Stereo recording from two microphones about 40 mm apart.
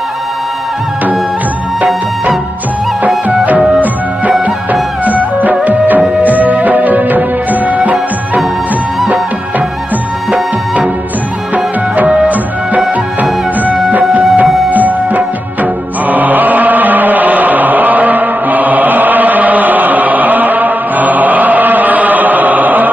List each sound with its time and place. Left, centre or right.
5.0 s music: right
12.3 s music: right